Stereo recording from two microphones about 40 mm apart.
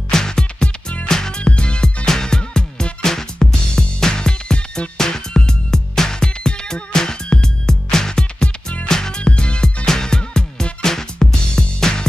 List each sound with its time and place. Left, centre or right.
0.1 s music: centre
1.4 s music: left
9.2 s music: left